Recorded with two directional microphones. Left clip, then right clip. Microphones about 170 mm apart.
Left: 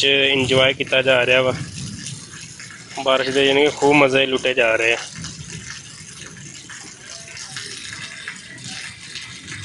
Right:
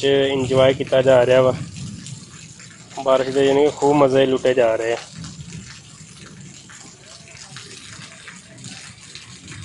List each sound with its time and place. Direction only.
0.0 s speech: 25° right (ahead or behind)
3.2 s speech: 25° right (ahead or behind)